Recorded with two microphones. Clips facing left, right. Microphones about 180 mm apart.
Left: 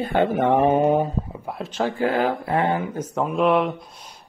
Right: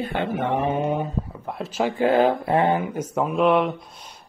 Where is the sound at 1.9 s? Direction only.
25° right (ahead or behind).